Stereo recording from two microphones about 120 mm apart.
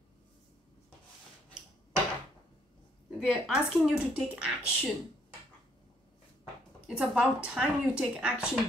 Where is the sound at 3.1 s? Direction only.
Centre (ahead or behind).